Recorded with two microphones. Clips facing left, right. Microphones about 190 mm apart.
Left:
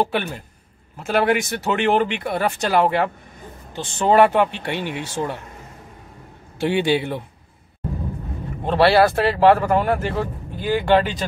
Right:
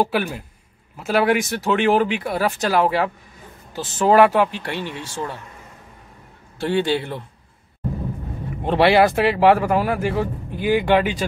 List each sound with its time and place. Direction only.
0.0 s speech: 5° right (ahead or behind)
5.0 s speech: 20° left (ahead or behind)
6.6 s a man's voice: 15° left (ahead or behind)
8.6 s speech: 15° right (ahead or behind)